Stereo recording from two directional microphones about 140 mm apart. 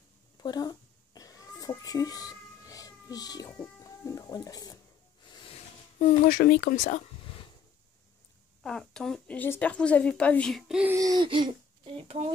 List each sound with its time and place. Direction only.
0.4 s cat: 30° left (ahead or behind)
5.2 s a sound: 35° left (ahead or behind)
5.9 s speech: 90° left; by 7.0 s 65° left (ahead or behind)
8.6 s speech: 5° left (ahead or behind)
11.0 s a sound: 25° right (ahead or behind)
11.2 s a child's voice: 35° right (ahead or behind)